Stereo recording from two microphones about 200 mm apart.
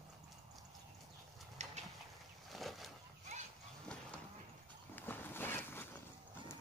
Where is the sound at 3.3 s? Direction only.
35° right (ahead or behind).